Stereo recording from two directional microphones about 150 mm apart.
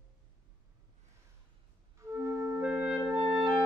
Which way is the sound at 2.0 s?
20° right (ahead or behind).